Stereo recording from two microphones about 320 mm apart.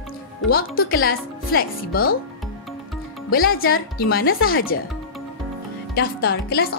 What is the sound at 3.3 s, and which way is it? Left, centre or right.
A woman's voice, left.